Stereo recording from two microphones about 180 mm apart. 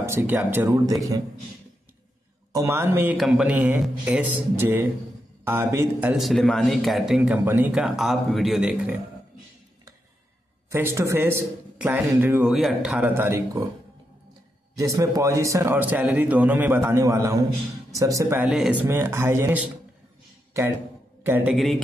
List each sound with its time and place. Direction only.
0.0 s a man's voice: 15° right (ahead or behind)
2.5 s a man's voice: 15° right (ahead or behind)
10.7 s a man's voice: 15° right (ahead or behind)
14.8 s a man's voice: 20° right (ahead or behind)
21.2 s a man's voice: 10° right (ahead or behind)
21.5 s speech: centre (ahead or behind)